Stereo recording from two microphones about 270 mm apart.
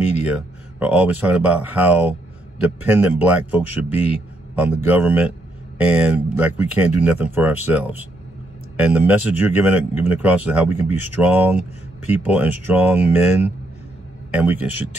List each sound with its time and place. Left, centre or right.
0.3 s a man's voice: centre